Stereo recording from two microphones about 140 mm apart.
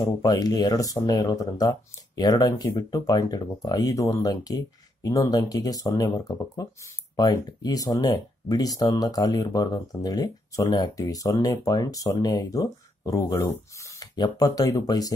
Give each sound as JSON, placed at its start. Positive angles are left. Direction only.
{"t": 0.2, "sound": "speech", "side_deg": 25}